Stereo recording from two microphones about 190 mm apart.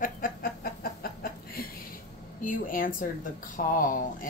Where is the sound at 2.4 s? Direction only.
45° left (ahead or behind).